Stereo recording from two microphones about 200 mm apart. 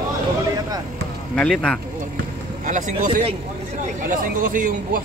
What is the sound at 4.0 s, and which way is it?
Speech, 45° right (ahead or behind).